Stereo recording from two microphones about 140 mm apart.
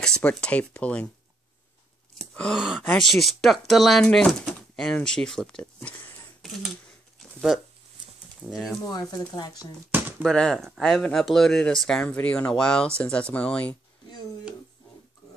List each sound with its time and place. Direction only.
0.0 s speech: 5° left (ahead or behind)
2.1 s wail: 5° left (ahead or behind)
2.9 s speech: centre (ahead or behind)
6.4 s a sound: centre (ahead or behind)
8.5 s speech: 5° right (ahead or behind)
9.1 s speech: 25° left (ahead or behind)
9.8 s a sound: 15° right (ahead or behind)
10.2 s speech: 5° left (ahead or behind)